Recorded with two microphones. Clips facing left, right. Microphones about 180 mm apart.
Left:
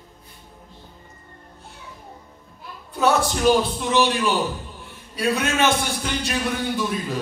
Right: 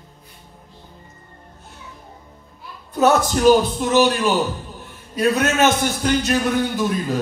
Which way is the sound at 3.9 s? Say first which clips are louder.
Right 4 dB; 40° right (ahead or behind).